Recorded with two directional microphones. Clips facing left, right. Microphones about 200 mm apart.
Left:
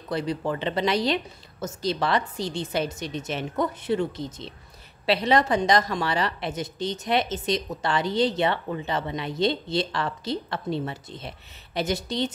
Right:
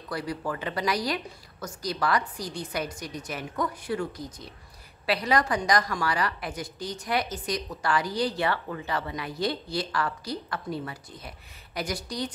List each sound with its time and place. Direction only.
0.1 s a woman's voice: 25° left (ahead or behind)